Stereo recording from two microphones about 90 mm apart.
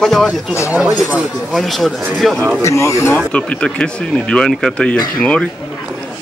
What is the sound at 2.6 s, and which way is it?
Speech, 35° left (ahead or behind).